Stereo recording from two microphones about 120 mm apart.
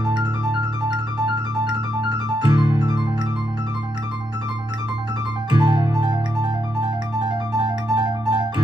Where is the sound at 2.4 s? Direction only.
35° right (ahead or behind).